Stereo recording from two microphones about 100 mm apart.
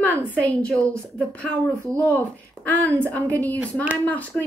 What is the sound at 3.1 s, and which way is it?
Speech, 15° left (ahead or behind).